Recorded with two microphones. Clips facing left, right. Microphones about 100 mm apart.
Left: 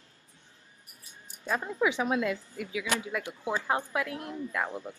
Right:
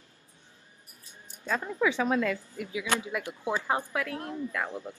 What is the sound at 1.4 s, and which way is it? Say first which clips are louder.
A woman's voice: even; 15° left (ahead or behind).